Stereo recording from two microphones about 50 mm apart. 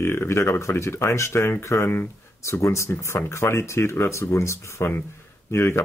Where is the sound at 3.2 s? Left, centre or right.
Left.